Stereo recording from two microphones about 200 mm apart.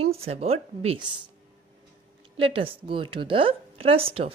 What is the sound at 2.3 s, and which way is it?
A woman's voice, 25° right (ahead or behind).